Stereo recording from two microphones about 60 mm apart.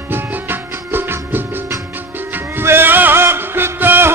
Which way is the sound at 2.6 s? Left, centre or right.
Right.